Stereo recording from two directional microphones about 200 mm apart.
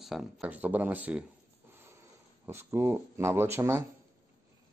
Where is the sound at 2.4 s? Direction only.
10° right (ahead or behind).